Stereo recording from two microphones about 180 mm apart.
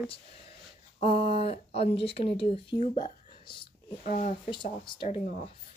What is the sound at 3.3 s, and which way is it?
Whispering, 25° left (ahead or behind).